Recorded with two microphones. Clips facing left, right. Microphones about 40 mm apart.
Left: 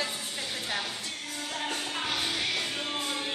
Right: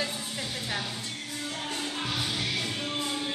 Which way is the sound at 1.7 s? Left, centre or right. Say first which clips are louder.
Even; left.